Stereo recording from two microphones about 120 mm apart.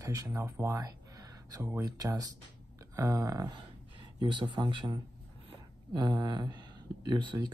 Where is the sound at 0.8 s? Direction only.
30° right (ahead or behind).